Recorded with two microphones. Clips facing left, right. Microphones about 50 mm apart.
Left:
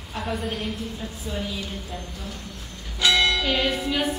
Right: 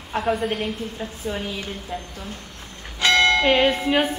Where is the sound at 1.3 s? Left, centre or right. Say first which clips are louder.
Right 2 dB; right.